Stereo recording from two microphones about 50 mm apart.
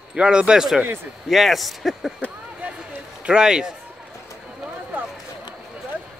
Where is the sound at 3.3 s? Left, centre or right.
Centre.